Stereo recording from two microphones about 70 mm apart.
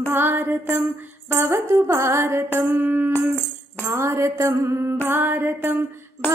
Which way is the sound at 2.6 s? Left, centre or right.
Right.